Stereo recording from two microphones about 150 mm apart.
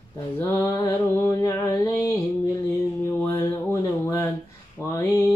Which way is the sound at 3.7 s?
15° left (ahead or behind).